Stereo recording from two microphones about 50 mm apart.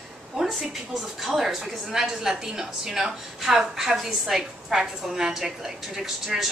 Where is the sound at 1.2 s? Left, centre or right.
Centre.